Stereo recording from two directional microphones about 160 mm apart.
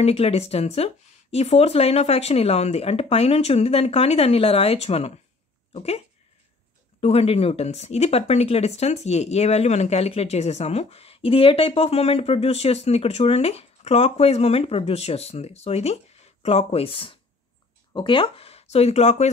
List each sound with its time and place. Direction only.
0.0 s speech: 40° left (ahead or behind)
7.0 s speech: 40° left (ahead or behind)